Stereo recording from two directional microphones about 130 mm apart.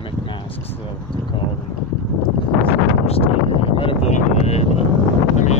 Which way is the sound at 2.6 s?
50° left (ahead or behind).